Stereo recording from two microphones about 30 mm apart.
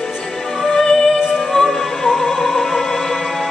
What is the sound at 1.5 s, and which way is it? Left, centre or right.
Music, centre.